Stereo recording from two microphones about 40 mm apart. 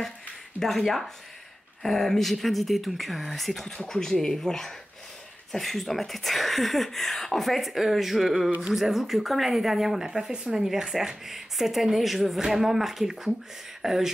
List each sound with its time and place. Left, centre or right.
0.6 s speech: centre
3.7 s speech: centre
8.5 s speech: centre
8.8 s speech: centre